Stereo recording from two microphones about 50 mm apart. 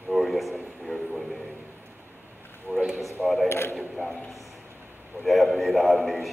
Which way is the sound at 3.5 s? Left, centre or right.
Left.